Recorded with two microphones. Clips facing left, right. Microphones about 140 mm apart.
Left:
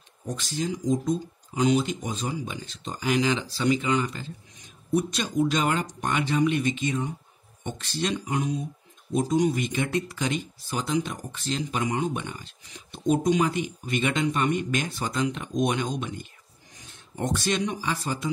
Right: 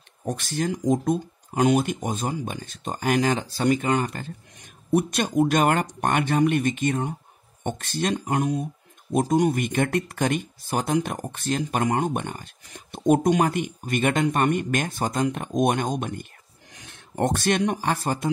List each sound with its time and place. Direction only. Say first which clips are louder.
0.2 s speech: right 3 dB; 55° right (ahead or behind)
16.7 s speech: right 7 dB; 65° right (ahead or behind)